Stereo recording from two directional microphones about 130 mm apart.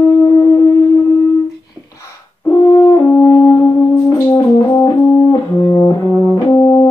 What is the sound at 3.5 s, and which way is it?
Music, 30° left (ahead or behind).